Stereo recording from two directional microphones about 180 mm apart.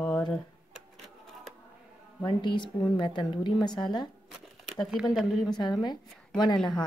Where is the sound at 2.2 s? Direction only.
25° left (ahead or behind).